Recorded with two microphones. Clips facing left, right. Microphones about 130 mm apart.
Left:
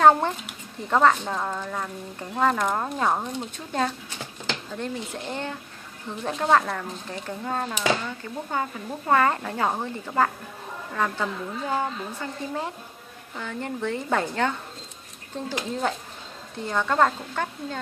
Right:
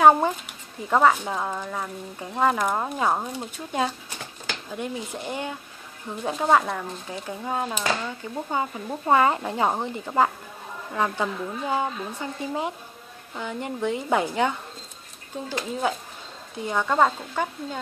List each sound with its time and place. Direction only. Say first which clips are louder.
0.0 s speech: right 1 dB; 10° right (ahead or behind)
16.5 s speech: right 1 dB; 10° right (ahead or behind)